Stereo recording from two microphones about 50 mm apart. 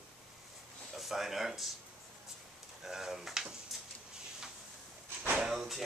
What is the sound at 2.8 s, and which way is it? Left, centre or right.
Speech, centre.